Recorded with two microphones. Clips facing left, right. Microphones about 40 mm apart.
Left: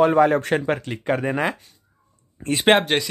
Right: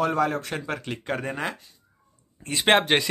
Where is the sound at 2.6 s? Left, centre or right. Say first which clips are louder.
Left 3 dB; centre.